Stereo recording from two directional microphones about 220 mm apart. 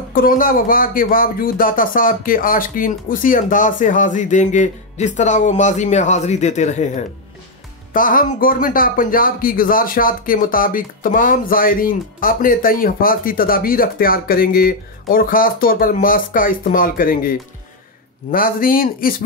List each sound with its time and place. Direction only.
0.1 s a man's voice: 40° left (ahead or behind)